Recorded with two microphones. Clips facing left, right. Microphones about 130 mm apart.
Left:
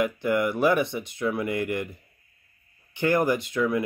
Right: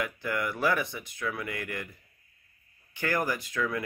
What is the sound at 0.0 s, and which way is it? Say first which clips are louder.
Speech: left 8 dB; 20° left (ahead or behind).